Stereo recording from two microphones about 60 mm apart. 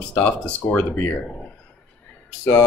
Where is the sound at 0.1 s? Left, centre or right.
Left.